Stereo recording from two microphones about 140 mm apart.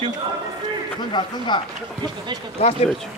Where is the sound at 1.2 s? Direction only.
30° left (ahead or behind).